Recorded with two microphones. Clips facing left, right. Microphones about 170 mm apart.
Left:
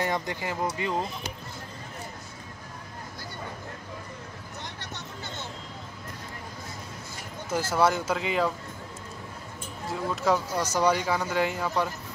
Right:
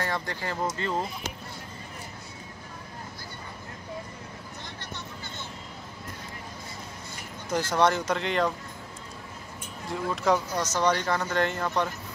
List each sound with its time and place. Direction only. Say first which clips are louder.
0.0 s speech: left 2 dB; 15° left (ahead or behind)
7.4 s speech: even; 5° left (ahead or behind)
9.8 s speech: even; centre (ahead or behind)